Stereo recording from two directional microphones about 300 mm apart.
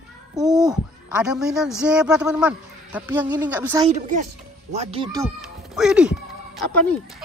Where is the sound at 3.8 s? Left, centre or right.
Right.